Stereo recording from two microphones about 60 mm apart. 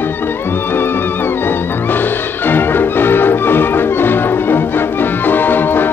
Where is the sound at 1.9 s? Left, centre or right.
Left.